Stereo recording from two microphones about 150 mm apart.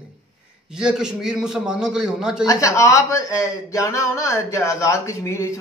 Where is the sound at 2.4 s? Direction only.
20° left (ahead or behind).